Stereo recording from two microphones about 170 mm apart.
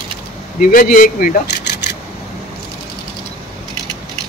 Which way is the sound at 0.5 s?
55° left (ahead or behind).